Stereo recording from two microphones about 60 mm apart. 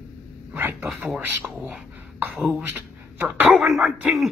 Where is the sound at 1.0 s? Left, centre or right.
Right.